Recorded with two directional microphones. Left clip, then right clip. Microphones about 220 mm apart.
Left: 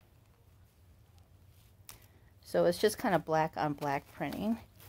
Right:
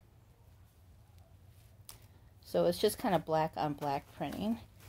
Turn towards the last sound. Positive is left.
turn(degrees=20)  # may be behind; listen again after turning